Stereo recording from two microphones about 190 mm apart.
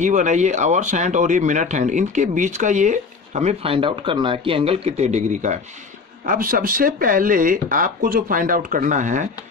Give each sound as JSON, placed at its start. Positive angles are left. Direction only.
{"t": 0.0, "sound": "speech", "side_deg": -40}